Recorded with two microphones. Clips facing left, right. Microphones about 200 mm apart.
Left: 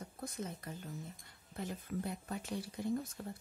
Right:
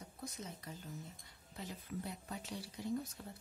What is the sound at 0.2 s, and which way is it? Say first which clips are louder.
Speech: left 5 dB; 55° left (ahead or behind).